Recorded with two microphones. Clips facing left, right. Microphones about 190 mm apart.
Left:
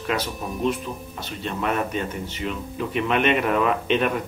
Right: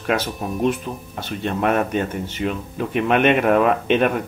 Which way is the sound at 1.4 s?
50° right (ahead or behind).